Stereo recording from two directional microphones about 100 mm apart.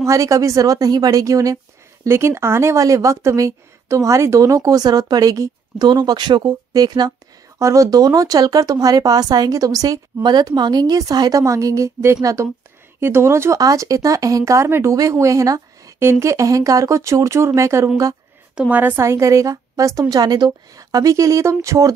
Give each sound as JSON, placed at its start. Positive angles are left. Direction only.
{"t": 0.0, "sound": "speech", "side_deg": -30}
{"t": 18.5, "sound": "speech", "side_deg": -10}